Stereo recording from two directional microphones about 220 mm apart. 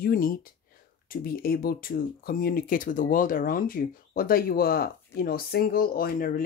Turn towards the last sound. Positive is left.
turn(degrees=40)  # may be behind; listen again after turning